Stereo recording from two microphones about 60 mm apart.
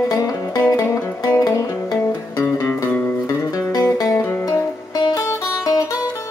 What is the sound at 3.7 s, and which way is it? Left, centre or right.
Music, left.